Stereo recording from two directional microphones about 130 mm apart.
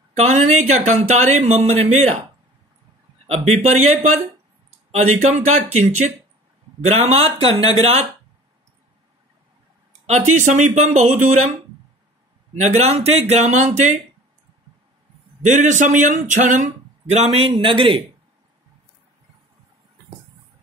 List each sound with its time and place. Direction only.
0.1 s a man's voice: 55° right (ahead or behind)
3.3 s a man's voice: 55° right (ahead or behind)
10.0 s a man's voice: 60° right (ahead or behind)
12.6 s a man's voice: 55° right (ahead or behind)
15.4 s a man's voice: 70° right (ahead or behind); by 18.0 s 40° right (ahead or behind)